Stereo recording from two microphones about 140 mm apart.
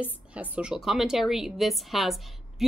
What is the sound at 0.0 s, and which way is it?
Speech, 10° right (ahead or behind).